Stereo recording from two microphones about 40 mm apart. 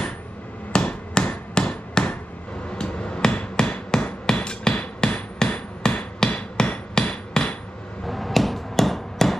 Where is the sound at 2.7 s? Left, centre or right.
Left.